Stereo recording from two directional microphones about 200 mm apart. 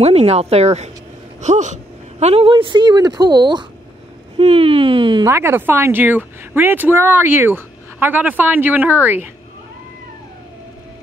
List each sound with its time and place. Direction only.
0.0 s a woman's voice: 30° right (ahead or behind)
5.2 s speech: 10° right (ahead or behind)